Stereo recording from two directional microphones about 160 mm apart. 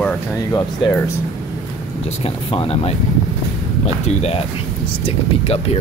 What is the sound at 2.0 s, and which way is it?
Speech, 35° left (ahead or behind).